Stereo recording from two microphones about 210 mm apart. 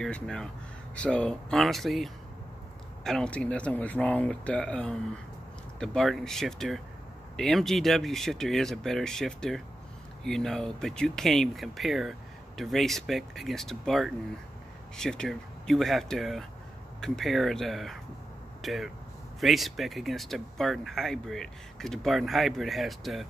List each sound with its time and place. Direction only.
0.0 s speech: 5° left (ahead or behind)